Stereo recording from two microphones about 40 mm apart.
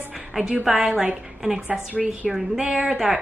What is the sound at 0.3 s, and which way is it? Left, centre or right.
A woman's voice, centre.